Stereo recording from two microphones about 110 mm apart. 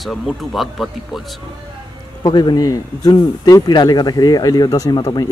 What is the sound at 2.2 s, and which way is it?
Speech, 40° left (ahead or behind).